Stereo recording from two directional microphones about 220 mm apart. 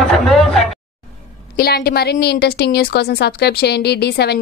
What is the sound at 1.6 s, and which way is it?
A woman's voice, 45° left (ahead or behind).